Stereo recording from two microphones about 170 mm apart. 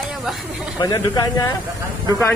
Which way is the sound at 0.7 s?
25° left (ahead or behind).